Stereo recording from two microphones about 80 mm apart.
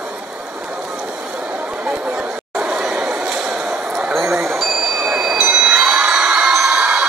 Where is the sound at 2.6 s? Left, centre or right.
Centre.